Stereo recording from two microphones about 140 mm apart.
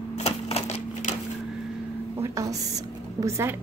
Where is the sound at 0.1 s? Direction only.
50° left (ahead or behind).